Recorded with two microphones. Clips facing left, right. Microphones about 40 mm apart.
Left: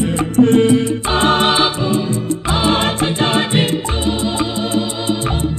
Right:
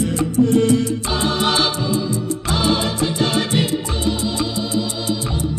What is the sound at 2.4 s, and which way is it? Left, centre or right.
Music, left.